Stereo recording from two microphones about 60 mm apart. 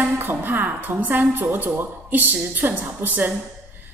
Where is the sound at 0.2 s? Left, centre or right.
Right.